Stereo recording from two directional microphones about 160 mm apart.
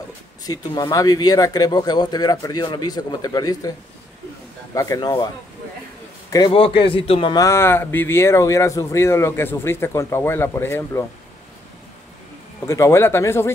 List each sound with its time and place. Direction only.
0.5 s speech: 25° left (ahead or behind)
4.7 s speech: 20° left (ahead or behind)
6.5 s a man's voice: 35° left (ahead or behind)
7.3 s speech: 20° left (ahead or behind)
12.5 s speech: 20° left (ahead or behind)